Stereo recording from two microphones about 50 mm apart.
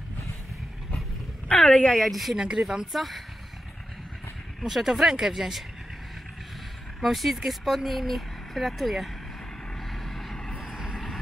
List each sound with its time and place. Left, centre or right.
1.9 s speech: centre
2.3 s speech: centre
2.9 s speech: centre
4.6 s speech: centre
7.0 s speech: centre
9.8 s vehicle: centre
10.6 s vehicle: centre